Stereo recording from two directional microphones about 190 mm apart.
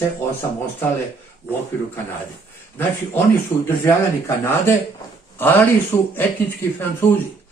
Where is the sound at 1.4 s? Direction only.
10° left (ahead or behind).